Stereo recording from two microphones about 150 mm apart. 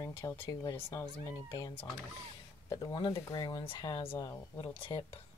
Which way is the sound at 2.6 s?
25° left (ahead or behind).